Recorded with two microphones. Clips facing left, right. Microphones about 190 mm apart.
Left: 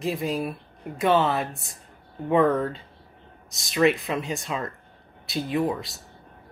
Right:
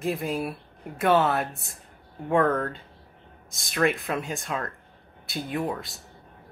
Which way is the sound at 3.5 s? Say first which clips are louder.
Right 1 dB; 55° right (ahead or behind).